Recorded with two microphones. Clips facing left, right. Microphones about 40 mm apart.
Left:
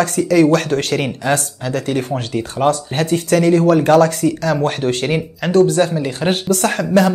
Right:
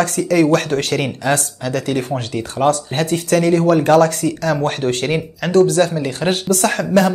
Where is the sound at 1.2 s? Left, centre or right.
Centre.